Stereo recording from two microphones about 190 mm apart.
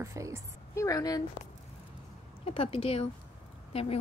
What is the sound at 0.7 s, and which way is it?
Speech, 20° left (ahead or behind).